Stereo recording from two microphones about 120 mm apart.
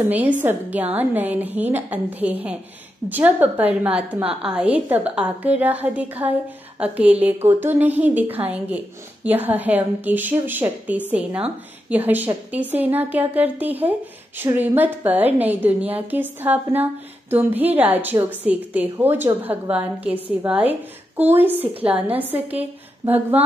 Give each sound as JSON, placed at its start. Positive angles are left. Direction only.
{"t": 0.1, "sound": "a woman's voice", "side_deg": -15}